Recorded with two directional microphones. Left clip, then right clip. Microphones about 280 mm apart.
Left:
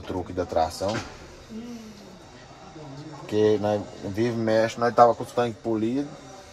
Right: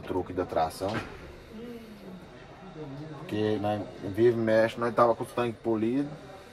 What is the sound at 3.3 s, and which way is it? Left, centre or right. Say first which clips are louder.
Speech: left 7 dB; left.